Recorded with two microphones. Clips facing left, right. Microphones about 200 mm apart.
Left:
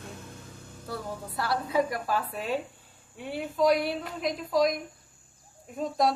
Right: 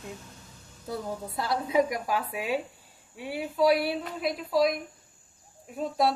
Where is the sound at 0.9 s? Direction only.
20° right (ahead or behind).